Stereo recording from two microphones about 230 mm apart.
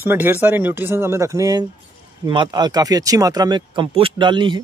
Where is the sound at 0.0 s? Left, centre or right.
Centre.